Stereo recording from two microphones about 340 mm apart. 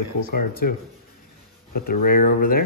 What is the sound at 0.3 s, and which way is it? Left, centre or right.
Speech, left.